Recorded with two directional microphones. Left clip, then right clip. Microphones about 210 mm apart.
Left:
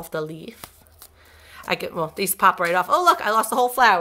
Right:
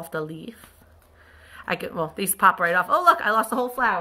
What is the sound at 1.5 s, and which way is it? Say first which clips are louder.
A woman's voice: left 2 dB; 35° left (ahead or behind).